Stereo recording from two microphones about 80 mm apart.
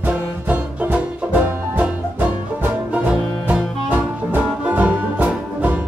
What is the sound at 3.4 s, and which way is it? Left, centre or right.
Music, right.